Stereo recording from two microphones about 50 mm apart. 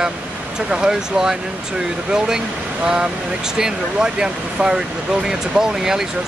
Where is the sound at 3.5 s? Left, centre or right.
Centre.